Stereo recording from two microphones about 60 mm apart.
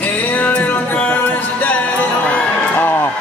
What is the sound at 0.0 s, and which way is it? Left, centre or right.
Music, left.